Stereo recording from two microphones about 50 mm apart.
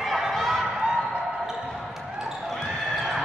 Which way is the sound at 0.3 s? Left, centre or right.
Centre.